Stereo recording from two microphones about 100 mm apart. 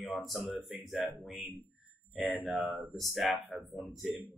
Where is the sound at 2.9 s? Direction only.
Centre (ahead or behind).